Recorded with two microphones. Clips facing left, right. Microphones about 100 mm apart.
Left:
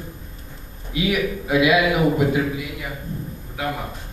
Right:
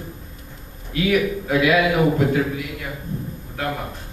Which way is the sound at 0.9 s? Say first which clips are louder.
Right 2 dB; 15° left (ahead or behind).